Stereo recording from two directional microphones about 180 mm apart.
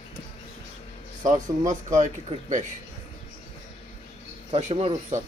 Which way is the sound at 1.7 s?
45° right (ahead or behind).